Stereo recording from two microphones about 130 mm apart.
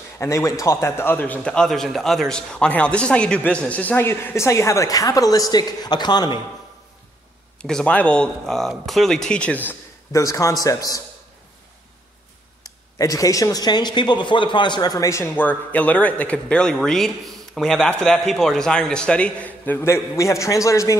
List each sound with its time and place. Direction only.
0.2 s a man's voice: 20° left (ahead or behind)
7.6 s speech: 5° left (ahead or behind)
9.7 s a man's voice: 25° left (ahead or behind)
12.9 s speech: 25° left (ahead or behind)